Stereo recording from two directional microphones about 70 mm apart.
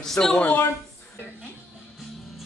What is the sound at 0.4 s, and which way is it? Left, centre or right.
Speech, left.